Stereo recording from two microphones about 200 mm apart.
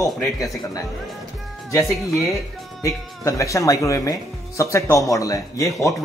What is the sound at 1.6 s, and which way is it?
Speech, 15° left (ahead or behind).